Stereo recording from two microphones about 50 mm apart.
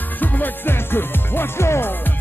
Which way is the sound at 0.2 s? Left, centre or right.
Left.